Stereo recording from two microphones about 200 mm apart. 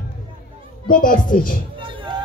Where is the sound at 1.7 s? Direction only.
25° right (ahead or behind).